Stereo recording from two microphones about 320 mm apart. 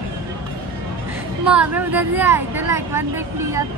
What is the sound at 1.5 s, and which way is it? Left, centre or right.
Speech, centre.